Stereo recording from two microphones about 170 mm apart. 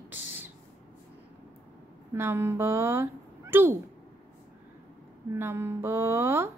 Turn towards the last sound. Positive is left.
turn(degrees=-15)  # may be behind; listen again after turning